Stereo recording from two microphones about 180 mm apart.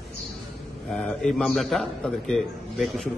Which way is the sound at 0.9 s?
5° left (ahead or behind).